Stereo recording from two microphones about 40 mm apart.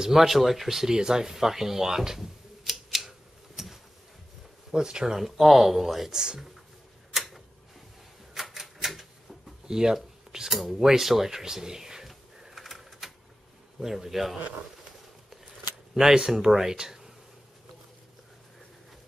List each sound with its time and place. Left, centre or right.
0.0 s a sound: centre
4.6 s speech: centre
7.2 s tick-tock: centre
8.4 s typewriter: centre
9.7 s a sound: centre
13.7 s speech: centre
15.9 s speech: centre